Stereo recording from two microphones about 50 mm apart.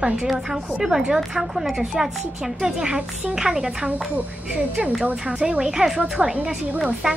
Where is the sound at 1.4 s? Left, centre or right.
Centre.